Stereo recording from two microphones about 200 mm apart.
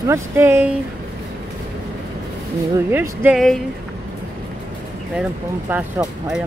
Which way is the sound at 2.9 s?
10° right (ahead or behind).